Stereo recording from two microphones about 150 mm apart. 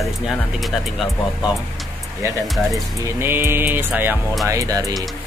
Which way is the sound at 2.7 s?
15° right (ahead or behind).